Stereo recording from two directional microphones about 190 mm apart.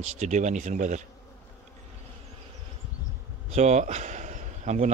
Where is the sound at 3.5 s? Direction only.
35° right (ahead or behind).